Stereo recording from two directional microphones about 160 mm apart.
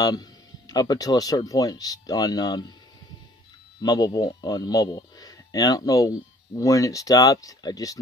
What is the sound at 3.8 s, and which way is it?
Speech, 25° left (ahead or behind).